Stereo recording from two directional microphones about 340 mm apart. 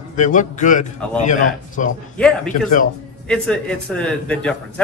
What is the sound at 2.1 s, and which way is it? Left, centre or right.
Speech, centre.